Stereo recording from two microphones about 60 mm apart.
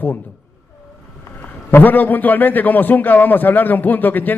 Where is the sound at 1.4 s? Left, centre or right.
Left.